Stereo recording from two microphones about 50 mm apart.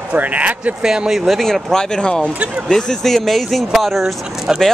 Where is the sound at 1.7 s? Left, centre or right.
Centre.